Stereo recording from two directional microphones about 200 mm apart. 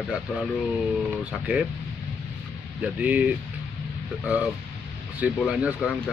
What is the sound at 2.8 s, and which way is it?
Speech, 5° right (ahead or behind).